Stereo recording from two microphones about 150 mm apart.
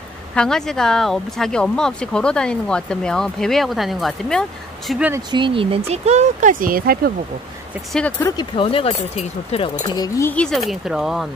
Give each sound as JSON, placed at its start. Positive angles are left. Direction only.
{"t": 0.3, "sound": "speech", "side_deg": 5}
{"t": 5.3, "sound": "speech", "side_deg": -35}
{"t": 8.2, "sound": "speech", "side_deg": 25}
{"t": 8.5, "sound": "speech", "side_deg": 40}
{"t": 9.8, "sound": "speech", "side_deg": 25}
{"t": 10.3, "sound": "speech", "side_deg": 5}